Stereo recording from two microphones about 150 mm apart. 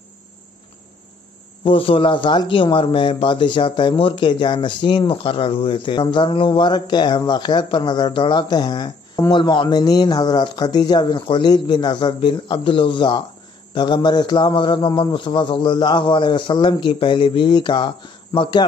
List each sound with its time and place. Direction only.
1.6 s speech: 35° left (ahead or behind)